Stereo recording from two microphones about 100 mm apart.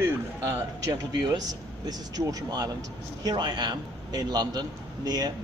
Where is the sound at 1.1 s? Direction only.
40° right (ahead or behind).